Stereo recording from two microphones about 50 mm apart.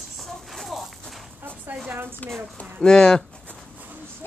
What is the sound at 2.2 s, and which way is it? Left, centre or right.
Speech, left.